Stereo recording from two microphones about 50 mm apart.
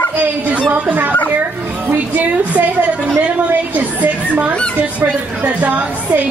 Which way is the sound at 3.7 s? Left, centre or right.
Right.